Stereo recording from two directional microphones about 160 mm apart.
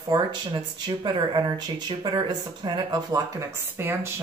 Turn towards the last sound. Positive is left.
turn(degrees=-15)  # may be behind; listen again after turning